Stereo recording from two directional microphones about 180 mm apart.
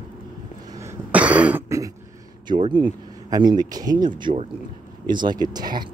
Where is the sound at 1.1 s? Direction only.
10° right (ahead or behind).